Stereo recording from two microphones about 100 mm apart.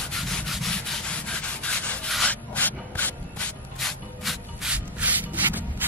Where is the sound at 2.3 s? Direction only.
15° left (ahead or behind).